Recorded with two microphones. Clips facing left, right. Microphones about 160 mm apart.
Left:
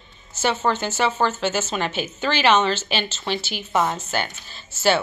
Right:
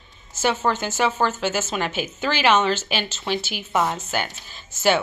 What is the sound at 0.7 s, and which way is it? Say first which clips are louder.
A woman's voice: even; 10° right (ahead or behind).